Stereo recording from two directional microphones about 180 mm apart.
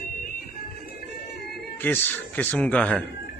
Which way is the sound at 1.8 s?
10° left (ahead or behind).